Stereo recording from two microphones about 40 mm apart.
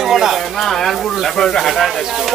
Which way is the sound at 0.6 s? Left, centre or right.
Centre.